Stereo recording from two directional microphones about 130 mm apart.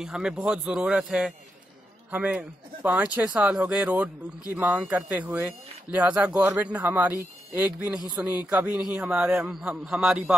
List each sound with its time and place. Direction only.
0.0 s a man's voice: 5° right (ahead or behind)